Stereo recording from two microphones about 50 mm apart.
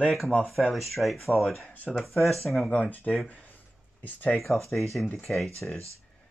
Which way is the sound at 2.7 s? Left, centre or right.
Left.